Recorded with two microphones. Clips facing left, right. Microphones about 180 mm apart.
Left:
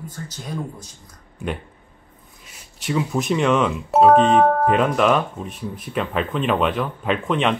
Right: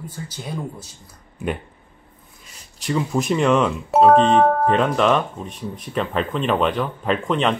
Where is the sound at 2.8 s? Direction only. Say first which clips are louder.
Right 1 dB; 5° left (ahead or behind).